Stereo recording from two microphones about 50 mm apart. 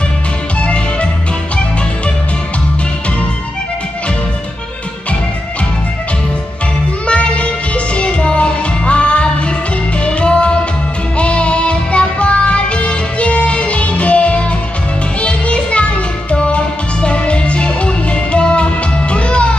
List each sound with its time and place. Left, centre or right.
0.6 s music: left
7.1 s music: left